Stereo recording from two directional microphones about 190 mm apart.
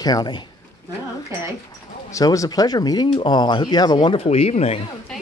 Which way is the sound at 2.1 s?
15° left (ahead or behind).